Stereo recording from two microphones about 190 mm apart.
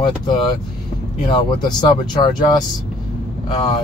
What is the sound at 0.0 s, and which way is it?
Speech, 25° left (ahead or behind).